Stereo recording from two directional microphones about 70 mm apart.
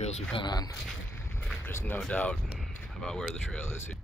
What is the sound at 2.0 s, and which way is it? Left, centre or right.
Speech, centre.